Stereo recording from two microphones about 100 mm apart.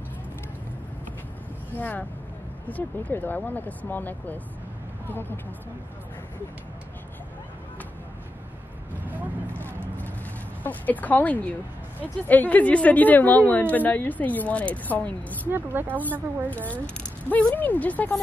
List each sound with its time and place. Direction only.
1.8 s a woman's voice: 15° left (ahead or behind)
9.0 s vehicle: 20° right (ahead or behind)
10.6 s a woman's voice: 15° left (ahead or behind)
15.4 s a woman's voice: 20° right (ahead or behind)
16.7 s a woman's voice: 15° left (ahead or behind)